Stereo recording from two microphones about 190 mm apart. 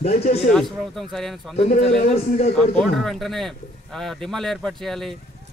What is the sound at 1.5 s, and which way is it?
Speech, 35° left (ahead or behind).